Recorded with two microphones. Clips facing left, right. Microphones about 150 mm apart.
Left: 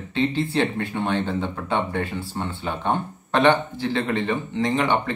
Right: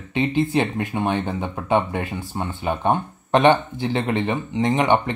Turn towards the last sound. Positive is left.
turn(degrees=-20)  # may be behind; listen again after turning